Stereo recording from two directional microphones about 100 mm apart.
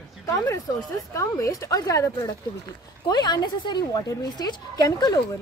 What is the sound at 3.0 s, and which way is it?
A woman's voice, 45° left (ahead or behind).